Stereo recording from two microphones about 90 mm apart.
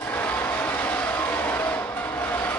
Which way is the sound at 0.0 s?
15° left (ahead or behind).